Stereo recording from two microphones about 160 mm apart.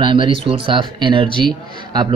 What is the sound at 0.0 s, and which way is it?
Speech, 30° right (ahead or behind).